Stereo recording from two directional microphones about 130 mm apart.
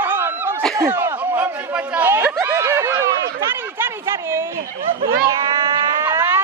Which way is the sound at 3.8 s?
20° right (ahead or behind).